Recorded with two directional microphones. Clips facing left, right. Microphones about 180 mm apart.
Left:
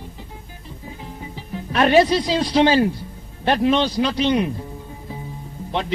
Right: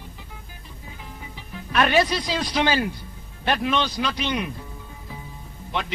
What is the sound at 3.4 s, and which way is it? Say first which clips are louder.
Speech: left 6 dB; 30° left (ahead or behind).